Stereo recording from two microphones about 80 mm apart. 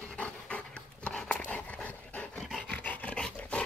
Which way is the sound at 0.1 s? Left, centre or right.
Centre.